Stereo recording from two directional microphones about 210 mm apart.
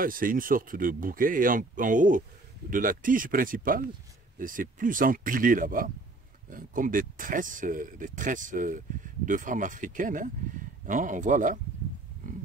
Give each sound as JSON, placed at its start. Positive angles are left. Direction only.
{"t": 0.0, "sound": "speech", "side_deg": -40}
{"t": 12.2, "sound": "pig", "side_deg": -40}